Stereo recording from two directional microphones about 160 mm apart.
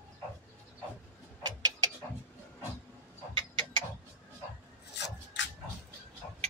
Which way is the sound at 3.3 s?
30° right (ahead or behind).